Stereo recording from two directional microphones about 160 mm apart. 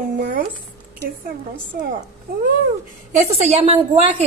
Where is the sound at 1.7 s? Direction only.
70° right (ahead or behind).